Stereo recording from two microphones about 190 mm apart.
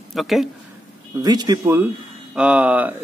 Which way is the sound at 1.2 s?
20° right (ahead or behind).